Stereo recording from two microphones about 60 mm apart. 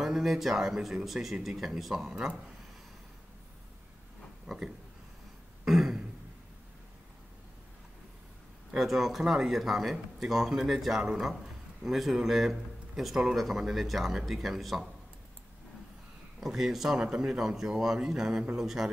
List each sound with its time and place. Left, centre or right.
0.0 s speech: centre
4.5 s speech: centre
8.7 s speech: centre
16.3 s speech: centre